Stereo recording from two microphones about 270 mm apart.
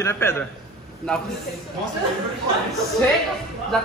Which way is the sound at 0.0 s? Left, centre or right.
Centre.